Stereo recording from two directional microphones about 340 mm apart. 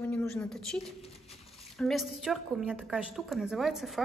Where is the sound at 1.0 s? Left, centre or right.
Centre.